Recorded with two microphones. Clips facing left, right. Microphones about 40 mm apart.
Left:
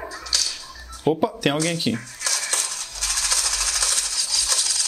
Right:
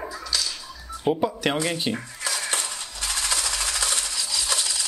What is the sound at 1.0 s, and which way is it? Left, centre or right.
Speech, centre.